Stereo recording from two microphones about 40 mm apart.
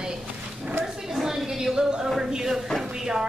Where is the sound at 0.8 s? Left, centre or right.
Centre.